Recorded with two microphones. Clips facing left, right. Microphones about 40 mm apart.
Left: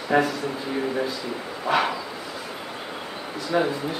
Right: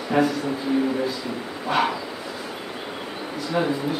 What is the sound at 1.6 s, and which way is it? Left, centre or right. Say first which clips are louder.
Speech: even; centre.